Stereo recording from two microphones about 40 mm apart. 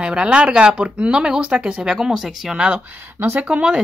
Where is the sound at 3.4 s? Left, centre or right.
Right.